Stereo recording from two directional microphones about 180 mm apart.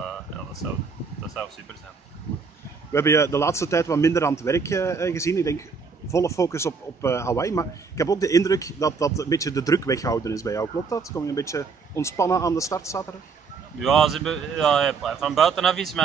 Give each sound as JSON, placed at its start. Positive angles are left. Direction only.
{"t": 2.9, "sound": "a man's voice", "side_deg": 15}
{"t": 13.7, "sound": "speech", "side_deg": 0}